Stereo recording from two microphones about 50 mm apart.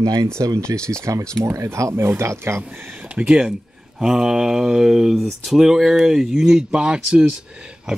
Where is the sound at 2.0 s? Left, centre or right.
Right.